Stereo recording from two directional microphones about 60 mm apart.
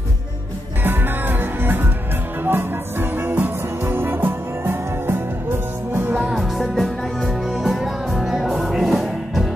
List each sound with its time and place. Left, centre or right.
0.8 s music: right
6.3 s music: centre